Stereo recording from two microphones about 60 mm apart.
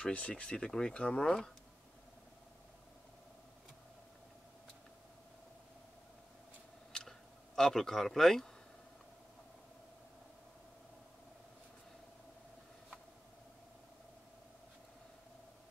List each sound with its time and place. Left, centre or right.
0.0 s speech: centre
7.1 s speech: centre